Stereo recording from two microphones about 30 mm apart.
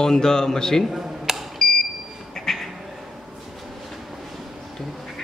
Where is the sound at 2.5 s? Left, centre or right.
Centre.